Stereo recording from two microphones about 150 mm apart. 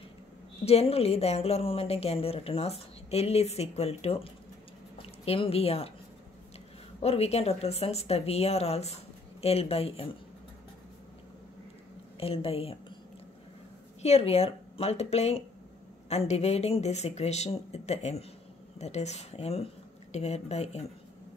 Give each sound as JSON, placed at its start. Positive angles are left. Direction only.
{"t": 0.7, "sound": "a woman's voice", "side_deg": 45}
{"t": 4.9, "sound": "a sound", "side_deg": 40}
{"t": 7.0, "sound": "a woman's voice", "side_deg": 45}
{"t": 12.2, "sound": "a woman's voice", "side_deg": 40}
{"t": 14.0, "sound": "a woman's voice", "side_deg": 45}